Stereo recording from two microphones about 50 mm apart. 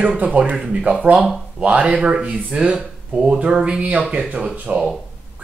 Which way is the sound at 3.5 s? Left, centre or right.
Centre.